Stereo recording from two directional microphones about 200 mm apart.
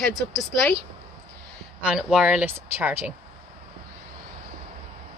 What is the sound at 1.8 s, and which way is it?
Speech, 5° right (ahead or behind).